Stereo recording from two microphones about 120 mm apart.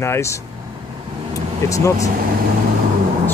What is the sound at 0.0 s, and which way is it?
Speech, 20° left (ahead or behind).